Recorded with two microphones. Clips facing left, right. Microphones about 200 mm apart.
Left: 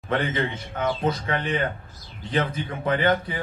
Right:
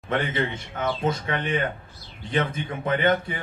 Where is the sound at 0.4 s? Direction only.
25° right (ahead or behind).